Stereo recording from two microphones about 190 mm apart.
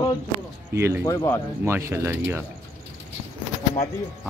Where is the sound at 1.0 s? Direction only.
15° left (ahead or behind).